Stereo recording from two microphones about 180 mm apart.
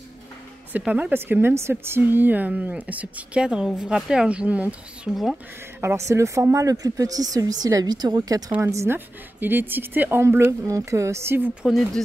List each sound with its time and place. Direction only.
0.7 s speech: 10° right (ahead or behind)
5.8 s speech: 15° right (ahead or behind)